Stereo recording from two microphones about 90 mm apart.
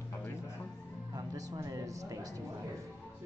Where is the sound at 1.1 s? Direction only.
45° right (ahead or behind).